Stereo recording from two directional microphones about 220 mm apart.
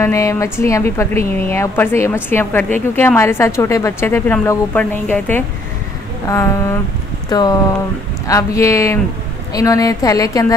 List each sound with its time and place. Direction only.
0.0 s a woman's voice: 15° left (ahead or behind)